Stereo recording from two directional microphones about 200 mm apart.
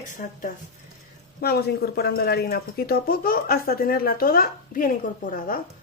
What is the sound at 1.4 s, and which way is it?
A woman's voice, 50° left (ahead or behind).